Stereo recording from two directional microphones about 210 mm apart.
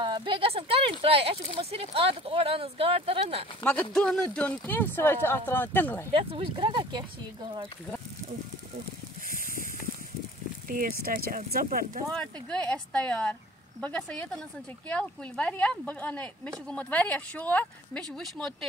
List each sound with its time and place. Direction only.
0.0 s speech: 20° right (ahead or behind)
3.9 s speech: centre (ahead or behind)
6.1 s speech: 25° right (ahead or behind)
10.7 s speech: 45° right (ahead or behind)
12.1 s speech: 5° left (ahead or behind)